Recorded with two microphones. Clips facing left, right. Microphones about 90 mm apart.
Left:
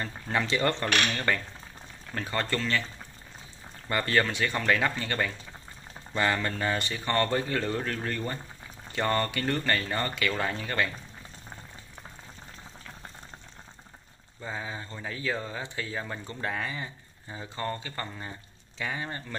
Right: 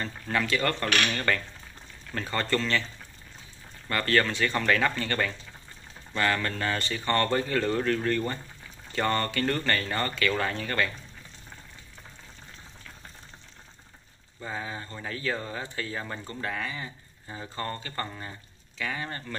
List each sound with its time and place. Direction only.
0.3 s speech: 20° left (ahead or behind)
1.1 s speech: 10° left (ahead or behind)
3.9 s speech: 10° left (ahead or behind)
14.4 s speech: 10° left (ahead or behind)
16.3 s speech: 20° left (ahead or behind)